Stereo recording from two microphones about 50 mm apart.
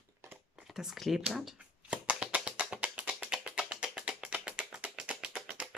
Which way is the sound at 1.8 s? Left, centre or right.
Right.